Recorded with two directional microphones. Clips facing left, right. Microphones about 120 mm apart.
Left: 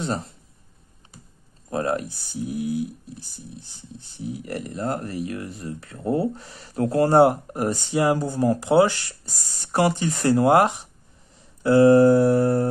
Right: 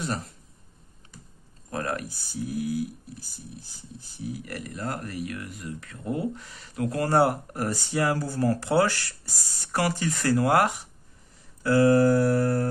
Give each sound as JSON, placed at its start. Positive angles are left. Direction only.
{"t": 0.0, "sound": "speech", "side_deg": 25}
{"t": 1.7, "sound": "speech", "side_deg": 25}